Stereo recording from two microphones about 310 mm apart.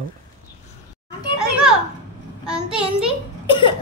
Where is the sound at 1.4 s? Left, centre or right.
Centre.